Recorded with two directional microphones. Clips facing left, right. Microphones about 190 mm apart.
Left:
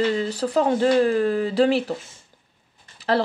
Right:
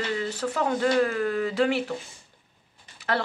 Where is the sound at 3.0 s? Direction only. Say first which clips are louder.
Left 6 dB; 35° left (ahead or behind).